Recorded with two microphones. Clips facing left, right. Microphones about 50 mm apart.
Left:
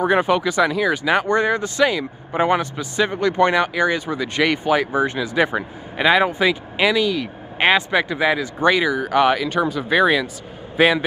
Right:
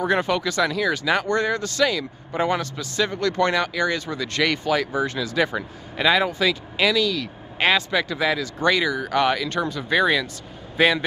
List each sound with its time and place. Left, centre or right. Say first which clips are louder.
0.0 s a man's voice: left 4 dB; centre